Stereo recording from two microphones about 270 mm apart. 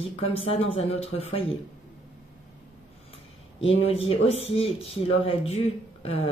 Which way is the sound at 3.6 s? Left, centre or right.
Left.